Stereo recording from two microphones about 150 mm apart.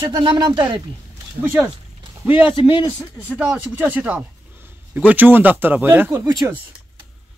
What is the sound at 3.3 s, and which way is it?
Speech, 10° right (ahead or behind).